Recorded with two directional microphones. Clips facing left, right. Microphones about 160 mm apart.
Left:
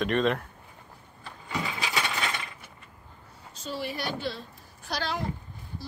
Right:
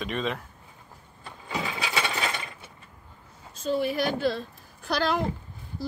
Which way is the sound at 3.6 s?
50° right (ahead or behind).